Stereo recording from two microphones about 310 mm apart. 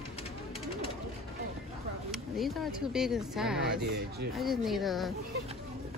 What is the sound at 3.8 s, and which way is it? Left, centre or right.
Speech, right.